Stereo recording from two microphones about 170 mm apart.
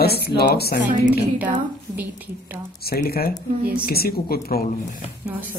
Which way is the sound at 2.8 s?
65° left (ahead or behind).